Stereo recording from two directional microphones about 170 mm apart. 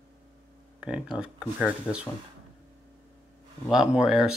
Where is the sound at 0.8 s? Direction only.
5° right (ahead or behind).